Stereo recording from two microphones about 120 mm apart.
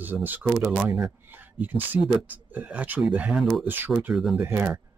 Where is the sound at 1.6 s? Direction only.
15° right (ahead or behind).